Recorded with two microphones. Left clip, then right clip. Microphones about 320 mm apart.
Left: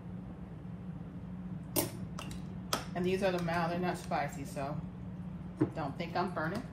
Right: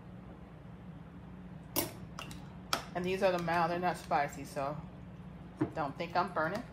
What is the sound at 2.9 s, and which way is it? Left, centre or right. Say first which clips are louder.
A woman's voice: right 1 dB; centre.